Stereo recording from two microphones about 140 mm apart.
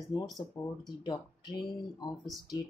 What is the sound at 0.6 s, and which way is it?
Speech, 25° left (ahead or behind).